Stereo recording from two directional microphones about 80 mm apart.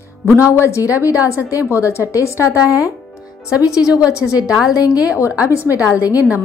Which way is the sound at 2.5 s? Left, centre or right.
Right.